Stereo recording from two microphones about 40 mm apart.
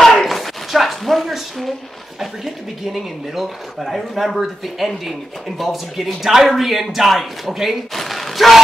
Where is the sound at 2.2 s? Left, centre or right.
Centre.